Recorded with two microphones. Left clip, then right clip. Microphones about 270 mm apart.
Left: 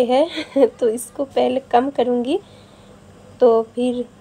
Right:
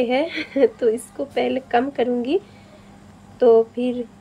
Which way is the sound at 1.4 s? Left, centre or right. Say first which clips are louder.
Left 3 dB; centre.